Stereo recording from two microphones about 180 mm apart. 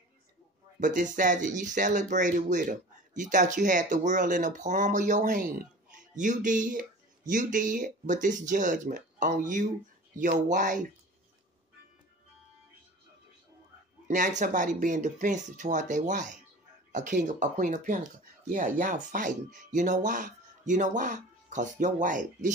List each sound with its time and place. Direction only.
0.7 s speech: 45° right (ahead or behind)
14.0 s speech: 45° right (ahead or behind)